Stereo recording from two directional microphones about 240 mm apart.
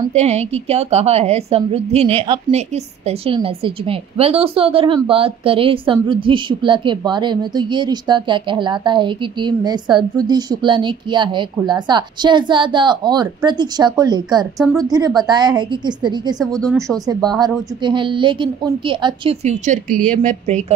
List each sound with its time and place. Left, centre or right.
0.1 s a woman's voice: right